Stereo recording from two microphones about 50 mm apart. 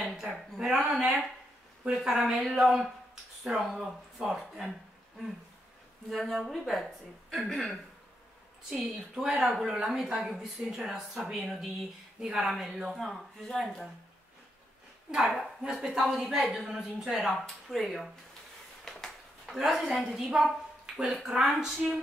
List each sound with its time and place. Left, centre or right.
0.3 s speech: right
0.7 s speech: centre
6.0 s speech: centre
8.7 s speech: centre
11.4 s speech: centre
12.2 s speech: centre
15.0 s speech: centre
17.6 s speech: centre
18.9 s a sound: centre
19.4 s speech: centre